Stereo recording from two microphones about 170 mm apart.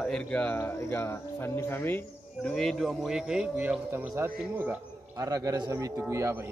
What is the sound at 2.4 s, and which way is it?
A man's voice, centre (ahead or behind).